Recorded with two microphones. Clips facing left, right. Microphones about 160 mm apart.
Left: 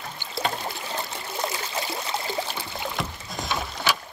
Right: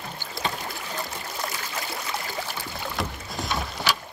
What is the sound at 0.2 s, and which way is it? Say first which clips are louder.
Boat: left 3 dB; 25° left (ahead or behind).